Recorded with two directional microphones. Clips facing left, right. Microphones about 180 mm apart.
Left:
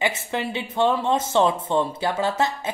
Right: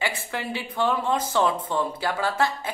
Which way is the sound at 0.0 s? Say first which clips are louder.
Left 4 dB; 20° left (ahead or behind).